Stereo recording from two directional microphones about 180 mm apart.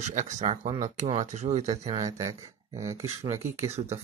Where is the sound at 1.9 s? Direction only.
20° right (ahead or behind).